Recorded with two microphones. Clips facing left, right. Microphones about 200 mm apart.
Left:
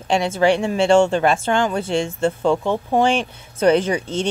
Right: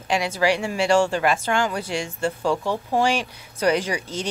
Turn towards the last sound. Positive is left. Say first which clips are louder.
# left 6 dB
turn(degrees=25)  # may be behind; listen again after turning